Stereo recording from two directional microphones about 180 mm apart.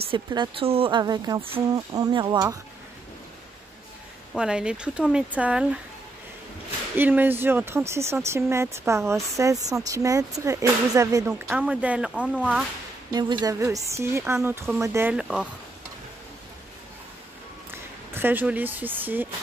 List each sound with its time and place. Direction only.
0.1 s speech: 25° right (ahead or behind)
4.3 s speech: 5° right (ahead or behind)
7.0 s speech: 10° right (ahead or behind)
11.5 s speech: 5° right (ahead or behind)
13.1 s speech: 25° right (ahead or behind)
18.1 s speech: 10° right (ahead or behind)